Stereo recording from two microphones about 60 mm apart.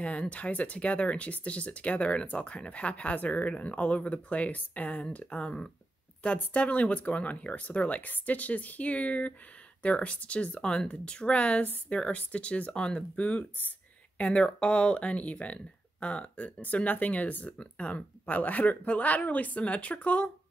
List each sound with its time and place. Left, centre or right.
0.0 s speech: left